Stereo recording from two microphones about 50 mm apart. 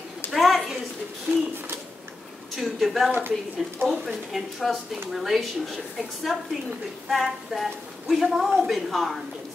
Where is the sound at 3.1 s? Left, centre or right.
Right.